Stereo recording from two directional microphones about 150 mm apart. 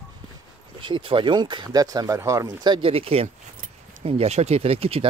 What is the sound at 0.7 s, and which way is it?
Speech, 35° right (ahead or behind).